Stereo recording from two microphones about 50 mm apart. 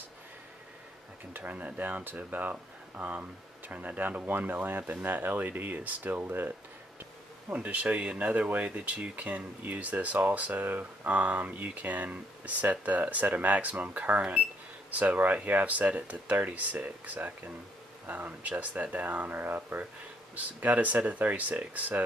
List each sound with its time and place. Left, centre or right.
1.3 s speech: right
7.5 s speech: right